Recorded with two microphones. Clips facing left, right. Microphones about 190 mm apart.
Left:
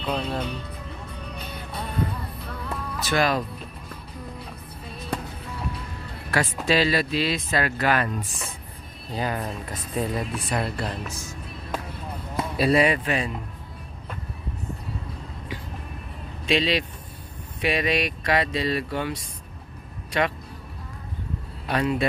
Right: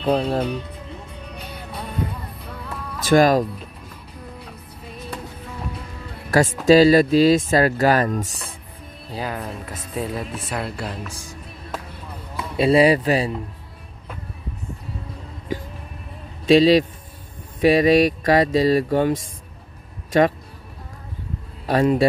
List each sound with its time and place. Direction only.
0.0 s speech: 40° right (ahead or behind)
3.1 s speech: 45° right (ahead or behind)
6.3 s speech: 45° right (ahead or behind)
9.1 s speech: 5° right (ahead or behind)
11.7 s basketball bounce: centre (ahead or behind)
12.5 s speech: 25° right (ahead or behind)
16.4 s speech: 40° right (ahead or behind)
21.6 s speech: 40° right (ahead or behind)